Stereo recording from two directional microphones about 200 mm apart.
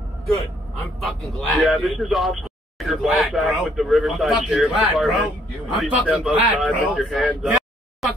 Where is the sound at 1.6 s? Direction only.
Centre (ahead or behind).